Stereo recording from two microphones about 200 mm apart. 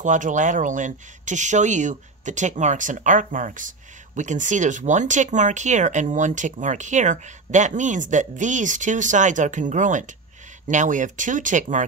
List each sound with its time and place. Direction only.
0.0 s speech: 40° right (ahead or behind)